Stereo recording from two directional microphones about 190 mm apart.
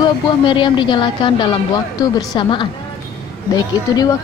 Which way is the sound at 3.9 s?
20° left (ahead or behind).